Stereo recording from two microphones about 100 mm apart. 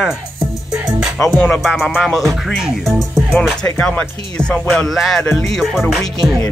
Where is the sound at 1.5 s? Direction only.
Centre (ahead or behind).